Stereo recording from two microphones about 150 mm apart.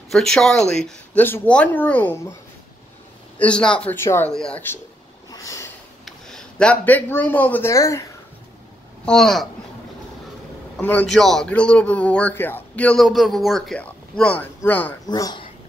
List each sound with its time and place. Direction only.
0.1 s a man's voice: 5° left (ahead or behind)
3.3 s a man's voice: 5° left (ahead or behind)
4.3 s speech: 5° left (ahead or behind)
5.3 s a sound: 20° left (ahead or behind)
6.0 s speech: 5° left (ahead or behind); by 8.0 s 20° left (ahead or behind)
9.0 s speech: 5° left (ahead or behind)
10.8 s a man's voice: 10° left (ahead or behind)
15.0 s speech: 25° left (ahead or behind)